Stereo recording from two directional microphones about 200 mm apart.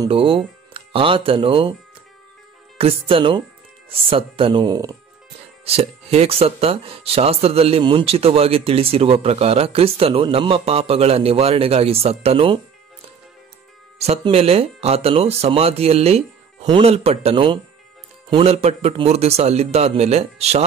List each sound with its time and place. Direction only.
0.0 s speech: 25° right (ahead or behind)
2.8 s speech: 25° right (ahead or behind)
5.7 s speech: 30° right (ahead or behind)
13.9 s speech: 30° right (ahead or behind)